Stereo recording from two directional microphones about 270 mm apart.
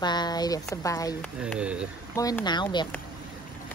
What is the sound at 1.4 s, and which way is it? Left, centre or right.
Speech, centre.